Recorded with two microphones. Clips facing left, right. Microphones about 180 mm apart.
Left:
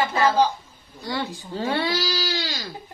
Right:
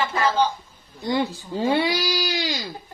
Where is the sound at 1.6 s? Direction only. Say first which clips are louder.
Right 3 dB; 15° right (ahead or behind).